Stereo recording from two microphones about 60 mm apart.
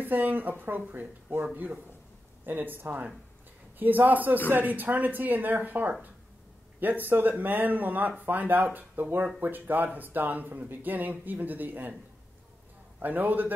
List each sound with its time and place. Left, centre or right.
0.0 s speech: right
13.0 s speech: right